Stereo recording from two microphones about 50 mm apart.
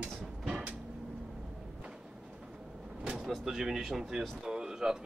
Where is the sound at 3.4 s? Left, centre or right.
Centre.